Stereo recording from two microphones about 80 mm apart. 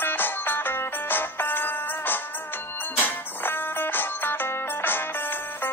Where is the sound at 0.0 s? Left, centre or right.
Left.